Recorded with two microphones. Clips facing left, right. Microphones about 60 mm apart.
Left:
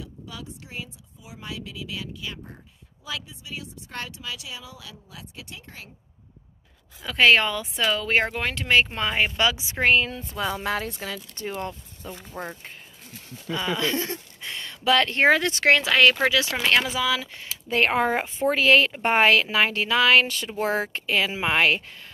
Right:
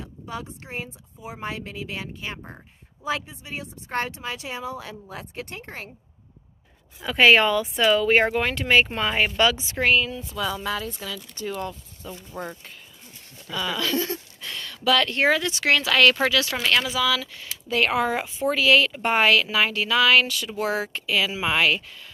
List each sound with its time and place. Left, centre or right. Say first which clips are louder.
0.0 s speech: right 5 dB; right
7.0 s speech: right 2 dB; centre
9.6 s speech: even; centre
9.8 s a woman's voice: left 1 dB; left
10.1 s speech: even; left
15.7 s speech: even; left
16.5 s a woman's voice: even; left